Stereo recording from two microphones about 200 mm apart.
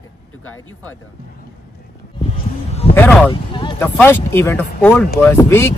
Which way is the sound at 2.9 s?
10° left (ahead or behind).